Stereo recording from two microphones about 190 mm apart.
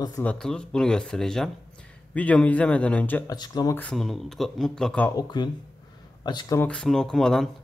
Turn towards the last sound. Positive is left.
turn(degrees=0)  # may be behind; listen again after turning